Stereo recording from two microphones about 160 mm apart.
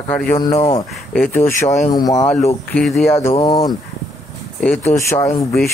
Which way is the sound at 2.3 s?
40° left (ahead or behind).